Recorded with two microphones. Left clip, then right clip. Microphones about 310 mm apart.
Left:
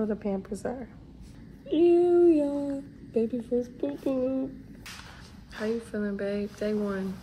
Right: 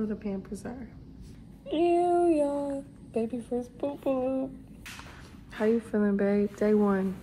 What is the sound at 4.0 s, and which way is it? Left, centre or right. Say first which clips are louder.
Speech: even; right.